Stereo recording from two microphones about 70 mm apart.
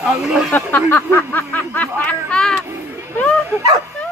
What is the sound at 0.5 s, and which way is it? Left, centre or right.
Speech, left.